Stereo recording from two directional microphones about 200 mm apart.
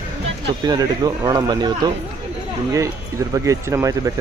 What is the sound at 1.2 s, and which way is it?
Speech, 20° right (ahead or behind).